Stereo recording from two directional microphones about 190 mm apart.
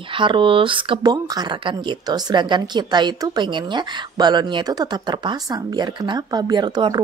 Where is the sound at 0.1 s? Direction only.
25° right (ahead or behind).